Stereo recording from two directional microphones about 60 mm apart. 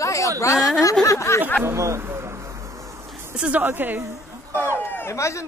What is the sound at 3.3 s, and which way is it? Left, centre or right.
Speech, centre.